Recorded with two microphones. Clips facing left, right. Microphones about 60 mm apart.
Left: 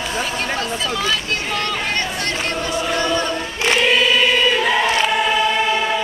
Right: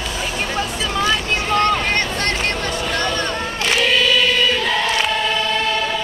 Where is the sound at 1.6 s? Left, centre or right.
Right.